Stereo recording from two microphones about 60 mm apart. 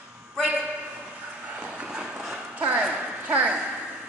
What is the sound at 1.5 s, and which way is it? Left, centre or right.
Clip-clop, centre.